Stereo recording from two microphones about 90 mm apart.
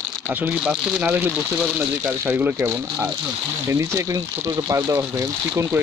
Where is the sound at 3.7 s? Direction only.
35° right (ahead or behind).